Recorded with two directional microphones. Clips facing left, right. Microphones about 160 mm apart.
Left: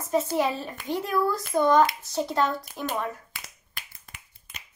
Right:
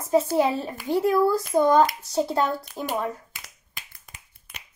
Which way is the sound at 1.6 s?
15° right (ahead or behind).